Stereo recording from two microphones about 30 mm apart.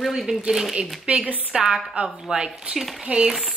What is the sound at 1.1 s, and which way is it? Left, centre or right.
Speech, right.